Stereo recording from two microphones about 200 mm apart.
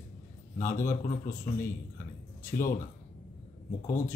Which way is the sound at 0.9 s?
40° left (ahead or behind).